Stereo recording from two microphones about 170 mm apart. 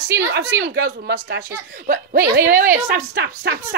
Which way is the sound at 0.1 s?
70° right (ahead or behind).